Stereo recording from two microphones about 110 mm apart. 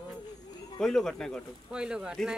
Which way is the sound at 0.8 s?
5° left (ahead or behind).